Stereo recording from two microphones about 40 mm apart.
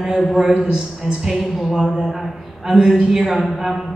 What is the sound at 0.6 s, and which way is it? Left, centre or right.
Speech, right.